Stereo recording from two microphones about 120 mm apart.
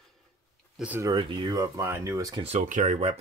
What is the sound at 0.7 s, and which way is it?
Speech, 15° right (ahead or behind).